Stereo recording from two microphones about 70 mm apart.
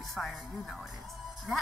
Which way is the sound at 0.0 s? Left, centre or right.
Centre.